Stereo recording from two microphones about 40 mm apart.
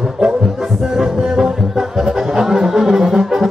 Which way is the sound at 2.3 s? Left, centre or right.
Centre.